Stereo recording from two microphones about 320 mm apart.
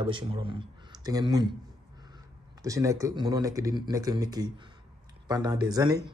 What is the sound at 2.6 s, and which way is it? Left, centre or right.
Speech, centre.